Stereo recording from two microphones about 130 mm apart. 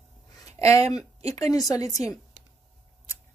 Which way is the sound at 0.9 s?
30° left (ahead or behind).